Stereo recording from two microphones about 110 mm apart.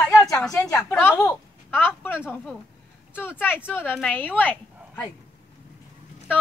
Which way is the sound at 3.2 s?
20° left (ahead or behind).